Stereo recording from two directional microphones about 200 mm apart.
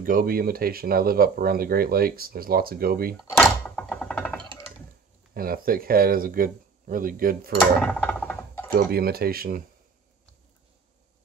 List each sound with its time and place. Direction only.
0.0 s speech: 45° right (ahead or behind)
3.3 s thunk: 5° left (ahead or behind)
5.3 s speech: 45° right (ahead or behind)
7.8 s a sound: 5° left (ahead or behind)
8.7 s speech: 50° right (ahead or behind)